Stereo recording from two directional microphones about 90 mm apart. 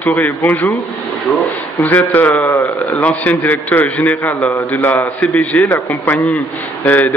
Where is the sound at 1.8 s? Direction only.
20° left (ahead or behind).